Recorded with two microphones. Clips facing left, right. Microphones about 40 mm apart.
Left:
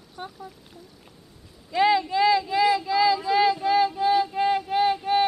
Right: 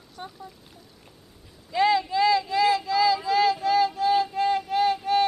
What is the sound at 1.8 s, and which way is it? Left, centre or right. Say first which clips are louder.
Speech: left 1 dB; centre.